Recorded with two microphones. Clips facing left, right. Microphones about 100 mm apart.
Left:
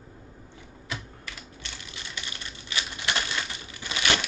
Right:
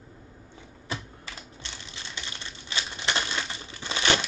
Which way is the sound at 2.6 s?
25° right (ahead or behind).